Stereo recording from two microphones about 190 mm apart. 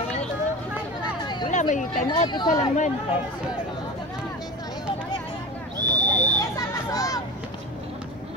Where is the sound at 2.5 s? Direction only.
40° left (ahead or behind).